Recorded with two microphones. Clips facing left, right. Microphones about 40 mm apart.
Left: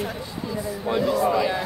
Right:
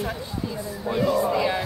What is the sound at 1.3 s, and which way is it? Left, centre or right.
Speech, right.